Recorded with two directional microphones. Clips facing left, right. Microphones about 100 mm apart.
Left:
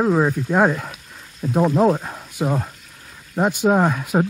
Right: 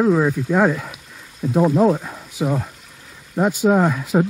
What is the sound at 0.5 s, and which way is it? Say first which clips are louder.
Speech: even; 35° left (ahead or behind).